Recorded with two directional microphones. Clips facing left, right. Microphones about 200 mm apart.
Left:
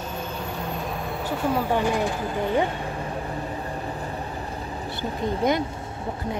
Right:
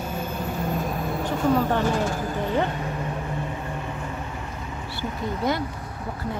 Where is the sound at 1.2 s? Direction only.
10° left (ahead or behind).